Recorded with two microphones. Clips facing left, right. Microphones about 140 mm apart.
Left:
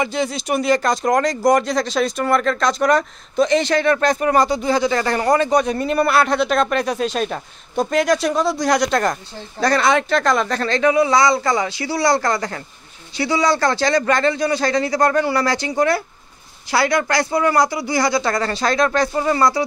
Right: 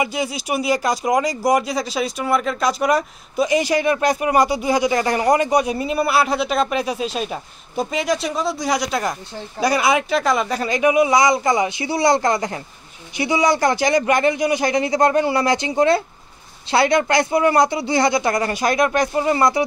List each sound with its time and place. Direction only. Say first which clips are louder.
0.0 s speech: left 1 dB; 10° right (ahead or behind)